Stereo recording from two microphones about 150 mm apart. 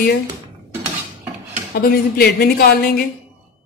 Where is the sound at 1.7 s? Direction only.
90° left.